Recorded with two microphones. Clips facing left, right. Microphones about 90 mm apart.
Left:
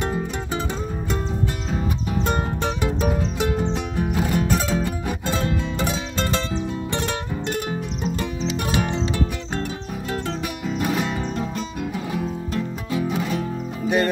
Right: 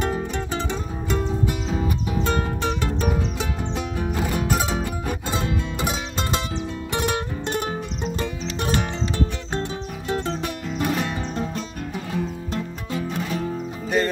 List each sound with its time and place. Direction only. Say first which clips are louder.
3.3 s music: left 5 dB; centre (ahead or behind)
4.5 s music: left 1 dB; 15° right (ahead or behind)
9.5 s music: even; 25° right (ahead or behind)
10.8 s music: even; 5° left (ahead or behind)
12.9 s music: left 3 dB; 5° left (ahead or behind)